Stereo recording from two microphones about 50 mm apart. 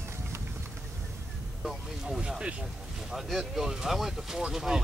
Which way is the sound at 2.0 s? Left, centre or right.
Centre.